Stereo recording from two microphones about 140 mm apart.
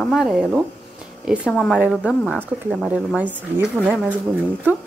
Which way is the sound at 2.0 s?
5° right (ahead or behind).